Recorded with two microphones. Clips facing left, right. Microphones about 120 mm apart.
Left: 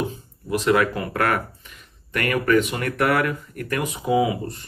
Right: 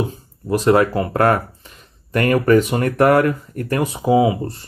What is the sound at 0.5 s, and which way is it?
Speech, 35° right (ahead or behind).